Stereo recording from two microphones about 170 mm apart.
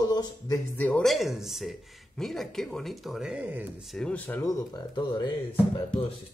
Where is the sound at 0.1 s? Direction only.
25° left (ahead or behind).